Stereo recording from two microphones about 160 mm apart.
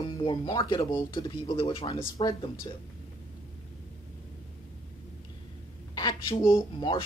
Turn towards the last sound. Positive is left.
turn(degrees=30)  # may be behind; listen again after turning